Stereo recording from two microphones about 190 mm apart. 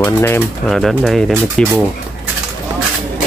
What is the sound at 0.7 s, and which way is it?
Speech, centre (ahead or behind).